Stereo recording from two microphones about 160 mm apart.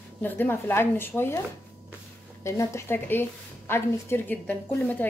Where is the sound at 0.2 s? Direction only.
10° left (ahead or behind).